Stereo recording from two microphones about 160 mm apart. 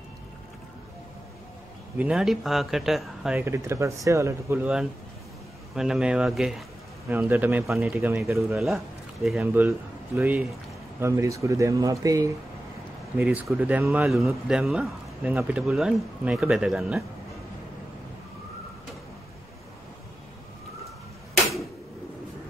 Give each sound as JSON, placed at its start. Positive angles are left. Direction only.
{"t": 2.0, "sound": "speech", "side_deg": -5}
{"t": 3.3, "sound": "speech", "side_deg": -15}
{"t": 5.8, "sound": "a man's voice", "side_deg": -5}
{"t": 9.5, "sound": "a man's voice", "side_deg": -15}
{"t": 13.2, "sound": "speech", "side_deg": -5}